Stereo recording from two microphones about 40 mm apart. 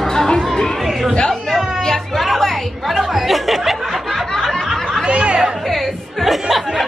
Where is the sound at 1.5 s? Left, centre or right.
Centre.